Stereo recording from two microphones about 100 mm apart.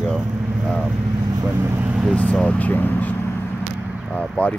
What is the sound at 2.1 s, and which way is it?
Speech, 10° left (ahead or behind).